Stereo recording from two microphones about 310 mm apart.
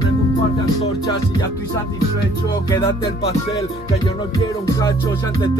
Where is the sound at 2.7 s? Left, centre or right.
Centre.